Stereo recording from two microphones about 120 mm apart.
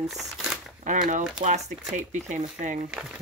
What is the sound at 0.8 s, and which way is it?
Speech, 90° right.